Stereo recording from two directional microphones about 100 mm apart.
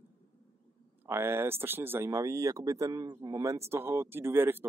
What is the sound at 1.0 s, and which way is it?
Speech, 25° right (ahead or behind).